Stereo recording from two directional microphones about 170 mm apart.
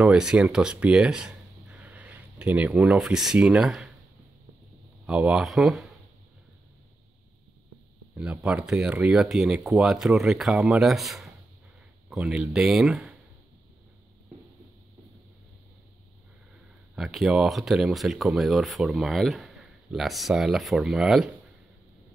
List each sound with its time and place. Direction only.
0.0 s speech: 5° right (ahead or behind)
5.0 s speech: 5° right (ahead or behind)
8.2 s speech: 5° right (ahead or behind)
16.9 s speech: centre (ahead or behind)